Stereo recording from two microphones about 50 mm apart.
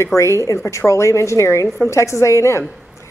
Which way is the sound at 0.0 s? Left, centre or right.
Left.